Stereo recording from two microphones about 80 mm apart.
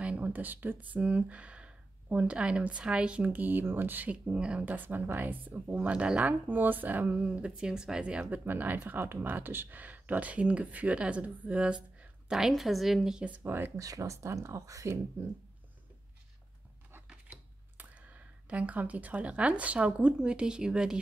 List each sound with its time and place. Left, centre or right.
0.0 s speech: centre
13.4 s speech: right
13.7 s speech: right
17.3 s speech: right